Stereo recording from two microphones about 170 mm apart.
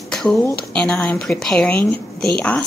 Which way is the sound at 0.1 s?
5° left (ahead or behind).